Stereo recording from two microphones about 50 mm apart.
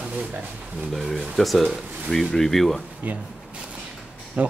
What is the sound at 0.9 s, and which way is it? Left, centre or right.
Speech, centre.